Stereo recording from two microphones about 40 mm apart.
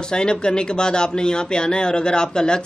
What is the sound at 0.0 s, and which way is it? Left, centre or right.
Speech, left.